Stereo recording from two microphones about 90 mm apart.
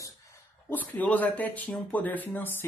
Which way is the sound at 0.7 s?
20° left (ahead or behind).